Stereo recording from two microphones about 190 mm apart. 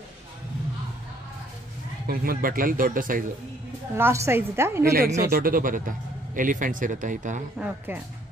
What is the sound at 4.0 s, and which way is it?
Speech, 15° right (ahead or behind).